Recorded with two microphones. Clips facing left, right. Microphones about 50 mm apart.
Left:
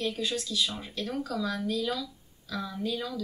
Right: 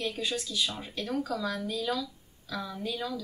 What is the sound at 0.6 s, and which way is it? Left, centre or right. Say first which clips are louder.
Speech: even; centre.